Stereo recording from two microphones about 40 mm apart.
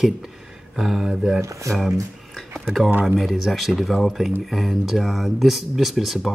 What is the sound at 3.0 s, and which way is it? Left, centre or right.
Speech, centre.